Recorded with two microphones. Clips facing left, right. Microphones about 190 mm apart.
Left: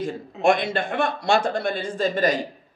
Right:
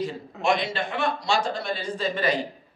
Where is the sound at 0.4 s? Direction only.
50° left (ahead or behind).